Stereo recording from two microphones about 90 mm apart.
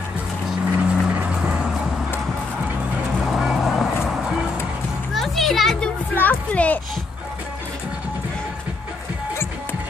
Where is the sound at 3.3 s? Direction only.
5° right (ahead or behind).